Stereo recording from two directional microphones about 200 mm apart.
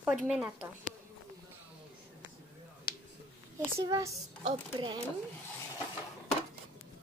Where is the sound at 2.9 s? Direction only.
50° left (ahead or behind).